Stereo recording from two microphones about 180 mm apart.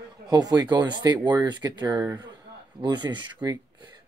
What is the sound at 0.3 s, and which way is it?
Speech, 20° right (ahead or behind).